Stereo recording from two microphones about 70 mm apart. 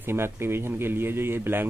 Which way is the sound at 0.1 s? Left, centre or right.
Right.